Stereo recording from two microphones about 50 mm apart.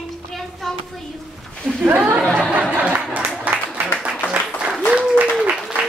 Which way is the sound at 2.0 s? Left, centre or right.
Right.